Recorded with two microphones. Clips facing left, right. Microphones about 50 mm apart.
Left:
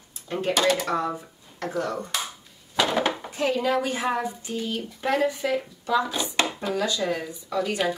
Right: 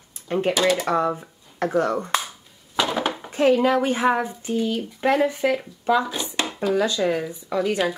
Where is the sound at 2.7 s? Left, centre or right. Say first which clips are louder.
Even; centre.